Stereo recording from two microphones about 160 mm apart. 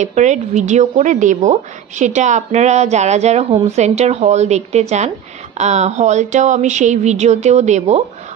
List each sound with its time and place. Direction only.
0.0 s a woman's voice: 50° right (ahead or behind)